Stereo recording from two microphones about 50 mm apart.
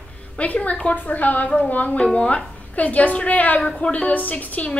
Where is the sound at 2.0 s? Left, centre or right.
Left.